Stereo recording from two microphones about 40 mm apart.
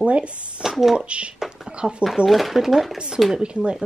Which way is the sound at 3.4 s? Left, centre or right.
Right.